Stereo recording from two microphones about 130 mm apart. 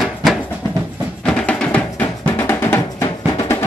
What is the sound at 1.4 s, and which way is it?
Music, 10° left (ahead or behind).